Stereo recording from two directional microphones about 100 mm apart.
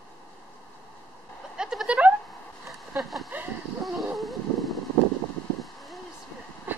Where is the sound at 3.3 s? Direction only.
20° right (ahead or behind).